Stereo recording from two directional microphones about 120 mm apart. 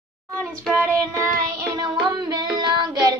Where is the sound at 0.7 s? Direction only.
20° right (ahead or behind).